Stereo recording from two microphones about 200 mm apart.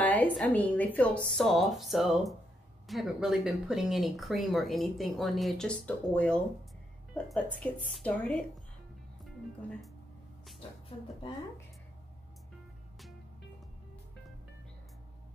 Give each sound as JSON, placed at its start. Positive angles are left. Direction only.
{"t": 0.0, "sound": "speech", "side_deg": 10}
{"t": 7.6, "sound": "speech", "side_deg": 5}
{"t": 10.9, "sound": "speech", "side_deg": 25}